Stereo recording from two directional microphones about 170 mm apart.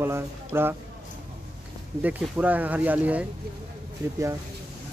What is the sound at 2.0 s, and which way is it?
Speech, 10° right (ahead or behind).